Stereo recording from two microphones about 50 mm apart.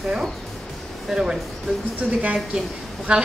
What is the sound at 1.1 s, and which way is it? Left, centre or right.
Music, centre.